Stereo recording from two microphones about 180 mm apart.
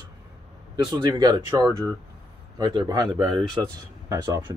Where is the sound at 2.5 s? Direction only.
20° right (ahead or behind).